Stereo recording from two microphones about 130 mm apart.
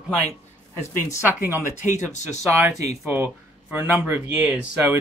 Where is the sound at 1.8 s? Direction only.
65° left (ahead or behind).